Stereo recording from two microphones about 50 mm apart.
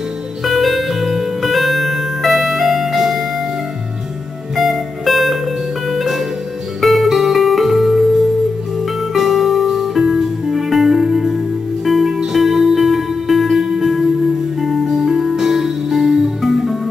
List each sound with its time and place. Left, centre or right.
0.5 s music: centre
4.6 s music: centre
9.1 s music: centre